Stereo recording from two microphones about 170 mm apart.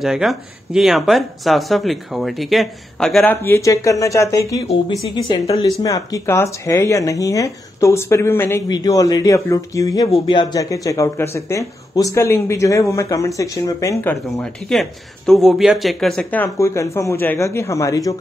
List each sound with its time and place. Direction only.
0.0 s speech: centre (ahead or behind)
3.4 s speech: 15° left (ahead or behind)
14.7 s speech: centre (ahead or behind); by 18.1 s 20° left (ahead or behind)